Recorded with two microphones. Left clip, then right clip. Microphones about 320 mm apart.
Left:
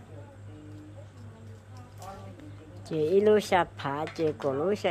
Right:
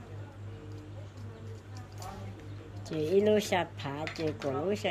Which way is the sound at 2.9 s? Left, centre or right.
Centre.